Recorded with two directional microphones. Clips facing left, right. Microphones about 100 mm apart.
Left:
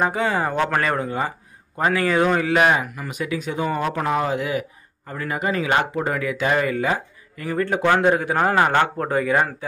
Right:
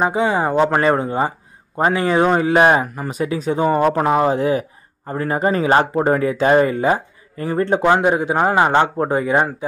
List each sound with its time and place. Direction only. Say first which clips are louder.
0.0 s a man's voice: right 4 dB; 20° right (ahead or behind)